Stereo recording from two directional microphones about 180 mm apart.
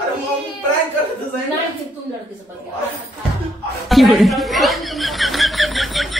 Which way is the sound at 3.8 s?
Centre (ahead or behind).